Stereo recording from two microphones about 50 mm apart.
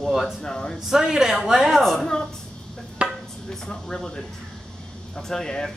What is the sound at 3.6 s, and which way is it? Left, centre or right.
Speech, centre.